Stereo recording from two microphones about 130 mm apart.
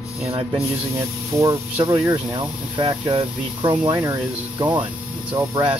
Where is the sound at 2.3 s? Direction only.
35° right (ahead or behind).